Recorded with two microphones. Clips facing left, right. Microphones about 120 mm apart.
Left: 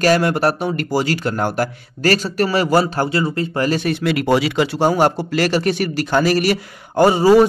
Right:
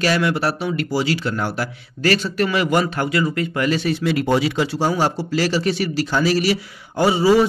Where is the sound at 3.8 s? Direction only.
65° left (ahead or behind).